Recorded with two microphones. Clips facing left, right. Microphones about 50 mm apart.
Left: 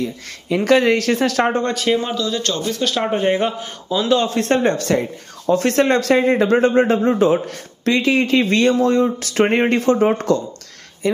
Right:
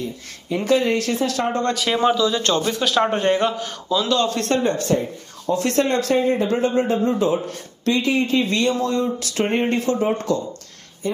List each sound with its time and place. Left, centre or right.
0.7 s a man's voice: left
1.6 s speech: centre
2.1 s speech: centre
2.4 s speech: right
2.8 s speech: centre
3.3 s a man's voice: centre
4.7 s speech: left
5.5 s a man's voice: left
7.4 s a man's voice: left
8.5 s a man's voice: left
9.5 s speech: left
9.8 s a man's voice: left